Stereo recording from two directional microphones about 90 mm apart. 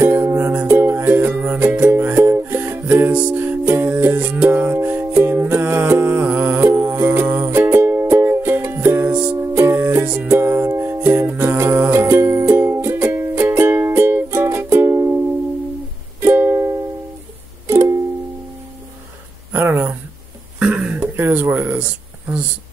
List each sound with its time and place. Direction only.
0.0 s music: 25° right (ahead or behind)
9.4 s music: 30° right (ahead or behind)
10.3 s music: 25° right (ahead or behind)
19.5 s a sound: 20° right (ahead or behind)